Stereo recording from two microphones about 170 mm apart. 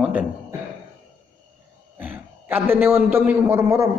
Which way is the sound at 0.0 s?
5° right (ahead or behind).